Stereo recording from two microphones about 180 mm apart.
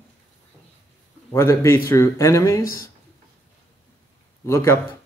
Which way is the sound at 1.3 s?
15° left (ahead or behind).